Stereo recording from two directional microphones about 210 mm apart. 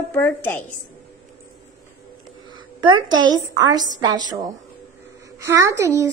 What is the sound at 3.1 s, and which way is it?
A woman's voice, 20° right (ahead or behind).